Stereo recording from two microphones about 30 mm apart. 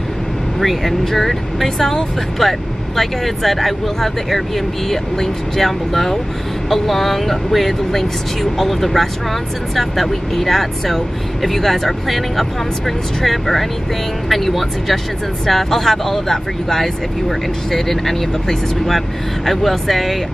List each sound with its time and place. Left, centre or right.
0.6 s speech: centre
1.8 s speech: centre